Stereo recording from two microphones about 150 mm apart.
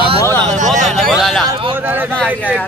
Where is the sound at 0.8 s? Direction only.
Centre (ahead or behind).